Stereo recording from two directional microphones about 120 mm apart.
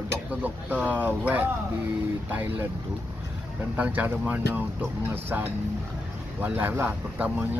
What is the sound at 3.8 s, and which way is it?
Speech, 15° right (ahead or behind).